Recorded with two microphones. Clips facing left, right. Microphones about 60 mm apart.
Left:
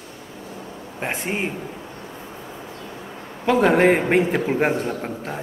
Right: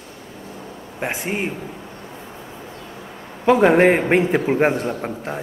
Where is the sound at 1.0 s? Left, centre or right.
Centre.